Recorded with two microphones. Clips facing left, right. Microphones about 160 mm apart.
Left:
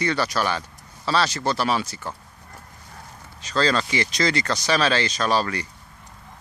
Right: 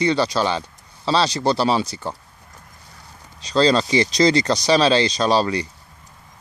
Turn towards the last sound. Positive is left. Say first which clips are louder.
# right 4 dB
turn(degrees=-30)  # may be behind; listen again after turning